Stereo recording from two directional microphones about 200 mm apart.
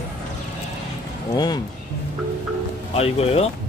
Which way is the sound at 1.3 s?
20° left (ahead or behind).